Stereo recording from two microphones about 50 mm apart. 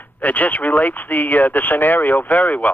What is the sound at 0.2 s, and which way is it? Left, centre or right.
Speech, left.